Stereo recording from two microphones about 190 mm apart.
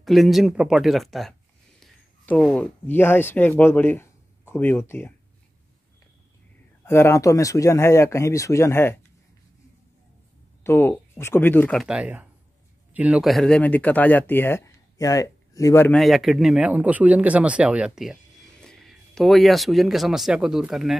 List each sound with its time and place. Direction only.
0.0 s speech: centre (ahead or behind)
6.8 s speech: 15° left (ahead or behind)
10.6 s speech: 10° left (ahead or behind)
11.8 s speech: 5° right (ahead or behind); by 16.0 s 15° left (ahead or behind)
16.0 s speech: centre (ahead or behind)